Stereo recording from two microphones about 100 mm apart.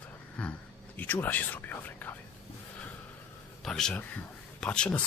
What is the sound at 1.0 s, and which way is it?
Speech, 15° left (ahead or behind).